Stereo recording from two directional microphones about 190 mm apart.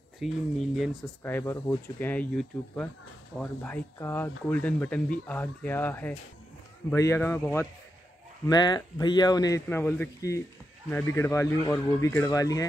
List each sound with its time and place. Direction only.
0.2 s speech: centre (ahead or behind)
1.2 s speech: 10° left (ahead or behind)